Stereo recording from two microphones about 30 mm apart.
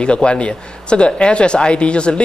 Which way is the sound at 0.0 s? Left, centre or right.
Left.